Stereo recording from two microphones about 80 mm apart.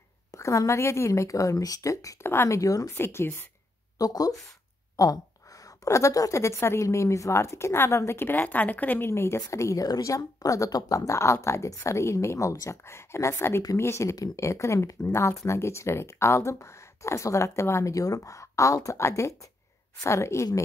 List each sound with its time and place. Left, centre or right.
0.3 s a woman's voice: left
3.0 s a woman's voice: left
4.0 s a woman's voice: left